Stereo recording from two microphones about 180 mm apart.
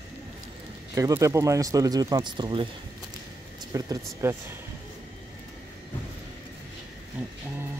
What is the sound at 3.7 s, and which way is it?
Speech, 20° right (ahead or behind).